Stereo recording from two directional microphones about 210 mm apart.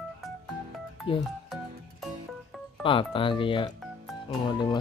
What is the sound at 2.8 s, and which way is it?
Music, 25° left (ahead or behind).